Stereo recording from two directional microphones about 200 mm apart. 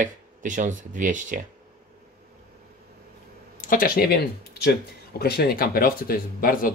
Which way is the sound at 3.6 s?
45° left (ahead or behind).